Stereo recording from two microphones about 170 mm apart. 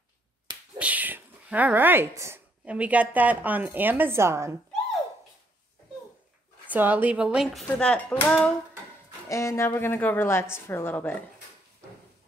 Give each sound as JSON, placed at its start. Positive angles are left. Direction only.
{"t": 0.7, "sound": "speech", "side_deg": -10}
{"t": 6.7, "sound": "a woman's voice", "side_deg": -10}
{"t": 7.6, "sound": "a woman's voice", "side_deg": 5}
{"t": 9.3, "sound": "a woman's voice", "side_deg": 20}